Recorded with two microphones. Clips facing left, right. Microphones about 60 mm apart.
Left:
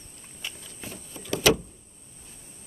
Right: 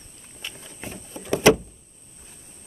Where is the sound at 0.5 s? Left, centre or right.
Right.